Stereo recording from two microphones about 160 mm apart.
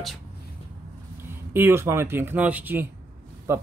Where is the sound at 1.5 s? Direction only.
15° right (ahead or behind).